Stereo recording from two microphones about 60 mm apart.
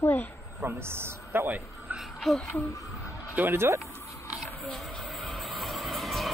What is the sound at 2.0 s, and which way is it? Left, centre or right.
Speech, centre.